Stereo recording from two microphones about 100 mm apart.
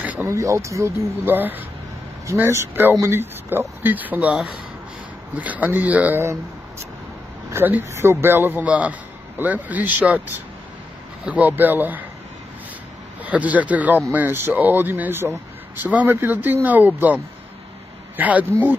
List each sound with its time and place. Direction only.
0.0 s a sound: 15° right (ahead or behind)
0.3 s a man's voice: 30° right (ahead or behind); by 6.2 s 15° right (ahead or behind)
7.5 s a man's voice: 25° right (ahead or behind)
13.2 s a man's voice: 15° right (ahead or behind)